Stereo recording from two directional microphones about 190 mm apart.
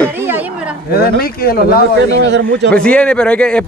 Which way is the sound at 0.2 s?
10° right (ahead or behind).